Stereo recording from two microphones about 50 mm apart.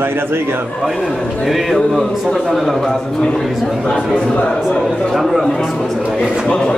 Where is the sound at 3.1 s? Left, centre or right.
Centre.